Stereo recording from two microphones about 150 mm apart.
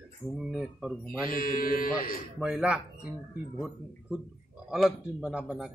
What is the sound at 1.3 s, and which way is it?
Mantra, 70° left (ahead or behind).